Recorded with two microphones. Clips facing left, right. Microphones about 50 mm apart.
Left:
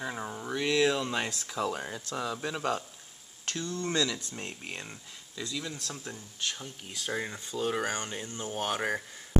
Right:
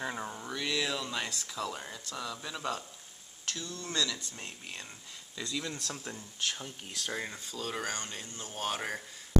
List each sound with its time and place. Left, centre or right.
0.0 s speech: centre
3.4 s speech: left
5.4 s speech: centre
7.0 s speech: centre